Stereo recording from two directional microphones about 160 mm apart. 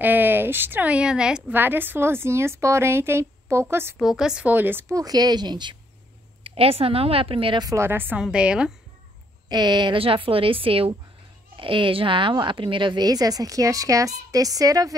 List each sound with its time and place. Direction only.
0.0 s a woman's voice: 10° right (ahead or behind)
4.0 s a woman's voice: 5° right (ahead or behind)
9.5 s a woman's voice: 25° right (ahead or behind)